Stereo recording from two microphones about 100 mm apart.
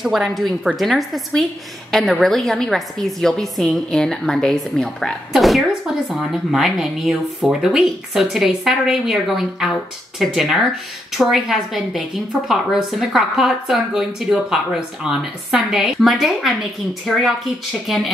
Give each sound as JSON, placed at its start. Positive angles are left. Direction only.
{"t": 0.0, "sound": "speech", "side_deg": -5}